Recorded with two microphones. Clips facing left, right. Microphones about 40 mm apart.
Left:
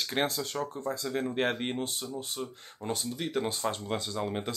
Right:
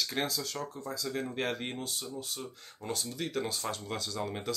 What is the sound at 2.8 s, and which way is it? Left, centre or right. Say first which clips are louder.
Speech: left 2 dB; centre.